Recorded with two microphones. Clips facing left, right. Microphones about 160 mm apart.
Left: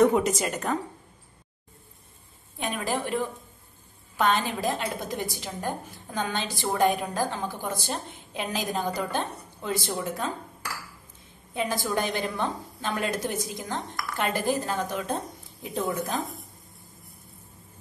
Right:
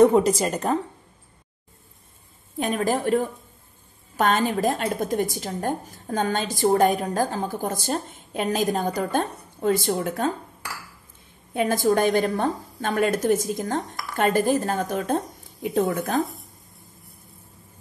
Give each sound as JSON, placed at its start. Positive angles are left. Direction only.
{"t": 0.0, "sound": "a woman's voice", "side_deg": -35}
{"t": 2.6, "sound": "a woman's voice", "side_deg": -45}
{"t": 11.5, "sound": "a woman's voice", "side_deg": -50}
{"t": 15.6, "sound": "speech", "side_deg": -55}